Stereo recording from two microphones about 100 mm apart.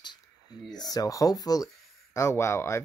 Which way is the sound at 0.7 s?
40° left (ahead or behind).